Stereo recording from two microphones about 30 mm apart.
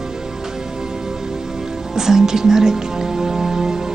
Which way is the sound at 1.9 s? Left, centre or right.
Centre.